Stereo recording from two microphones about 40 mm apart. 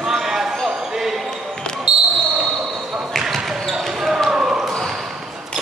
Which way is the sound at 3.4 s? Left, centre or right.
Centre.